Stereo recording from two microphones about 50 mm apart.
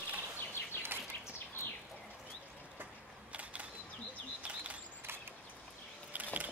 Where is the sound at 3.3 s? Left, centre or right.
Right.